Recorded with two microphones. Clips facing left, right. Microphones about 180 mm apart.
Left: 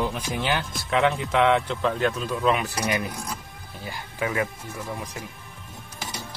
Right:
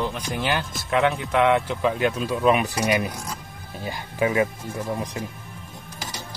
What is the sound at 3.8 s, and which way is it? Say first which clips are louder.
Speech: right 5 dB; 20° right (ahead or behind).